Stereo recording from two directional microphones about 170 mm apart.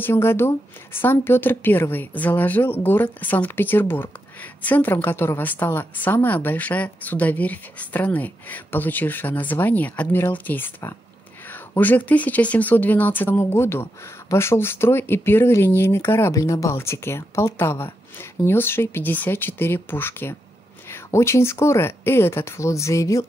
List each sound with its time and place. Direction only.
0.0 s a woman's voice: 15° left (ahead or behind)